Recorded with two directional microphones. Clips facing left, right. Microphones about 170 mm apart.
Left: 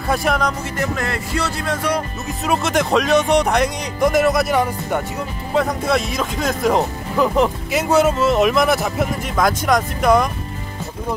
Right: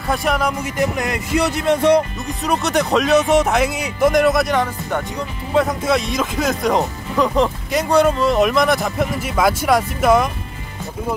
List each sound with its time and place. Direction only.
0.1 s music: centre (ahead or behind); by 2.0 s 20° right (ahead or behind)
2.4 s speech: centre (ahead or behind)